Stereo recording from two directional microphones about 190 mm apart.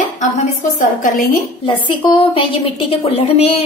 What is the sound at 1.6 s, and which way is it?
A woman's voice, 25° left (ahead or behind).